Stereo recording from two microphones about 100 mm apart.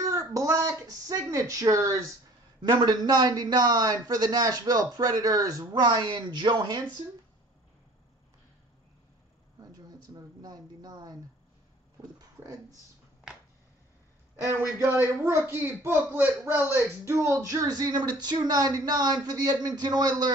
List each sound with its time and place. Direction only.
0.0 s speech: 35° right (ahead or behind)
2.6 s a man's voice: 45° right (ahead or behind)
9.7 s speech: 40° right (ahead or behind)
14.4 s a man's voice: 25° right (ahead or behind); by 20.3 s 45° right (ahead or behind)